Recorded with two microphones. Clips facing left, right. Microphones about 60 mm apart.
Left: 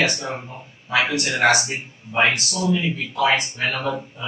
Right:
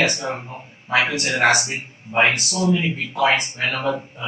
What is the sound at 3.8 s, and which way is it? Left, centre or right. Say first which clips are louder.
Speech: right 2 dB; centre.